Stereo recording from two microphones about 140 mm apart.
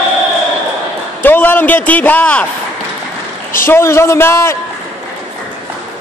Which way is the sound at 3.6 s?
20° left (ahead or behind).